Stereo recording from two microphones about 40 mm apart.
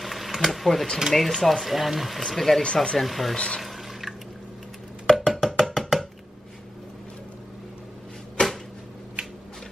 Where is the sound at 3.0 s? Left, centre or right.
Centre.